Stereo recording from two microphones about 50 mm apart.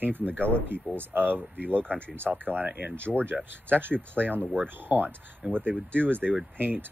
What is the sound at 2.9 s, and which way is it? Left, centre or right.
Speech, left.